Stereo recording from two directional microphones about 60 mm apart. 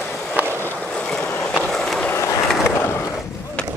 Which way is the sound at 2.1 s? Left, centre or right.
Left.